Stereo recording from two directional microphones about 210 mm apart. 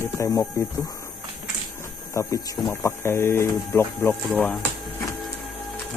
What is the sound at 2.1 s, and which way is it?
Speech, 15° left (ahead or behind).